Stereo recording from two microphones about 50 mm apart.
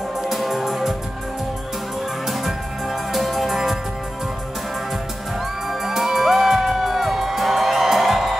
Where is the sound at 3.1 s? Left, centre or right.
Centre.